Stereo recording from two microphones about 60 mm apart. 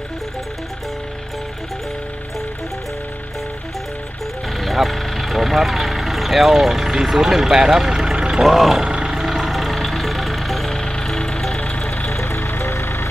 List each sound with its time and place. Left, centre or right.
4.6 s speech: centre
8.8 s music: centre
10.8 s music: centre
12.1 s music: left